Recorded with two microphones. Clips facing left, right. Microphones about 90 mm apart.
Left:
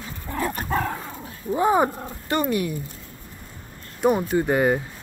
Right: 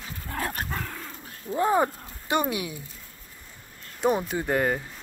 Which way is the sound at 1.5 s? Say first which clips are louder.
Left 3 dB; 10° left (ahead or behind).